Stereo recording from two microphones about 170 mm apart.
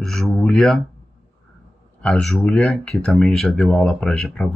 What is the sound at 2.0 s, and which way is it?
Speech, centre (ahead or behind).